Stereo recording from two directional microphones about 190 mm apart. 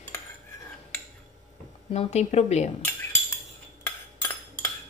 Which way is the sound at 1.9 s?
35° left (ahead or behind).